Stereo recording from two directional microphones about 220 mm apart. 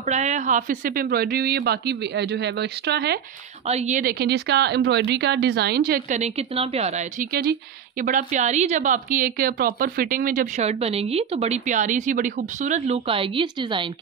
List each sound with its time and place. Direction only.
0.0 s speech: 30° right (ahead or behind); by 3.2 s 50° right (ahead or behind)
3.6 s a woman's voice: 30° right (ahead or behind)